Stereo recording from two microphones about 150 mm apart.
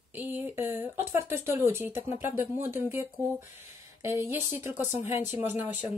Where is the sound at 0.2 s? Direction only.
15° right (ahead or behind).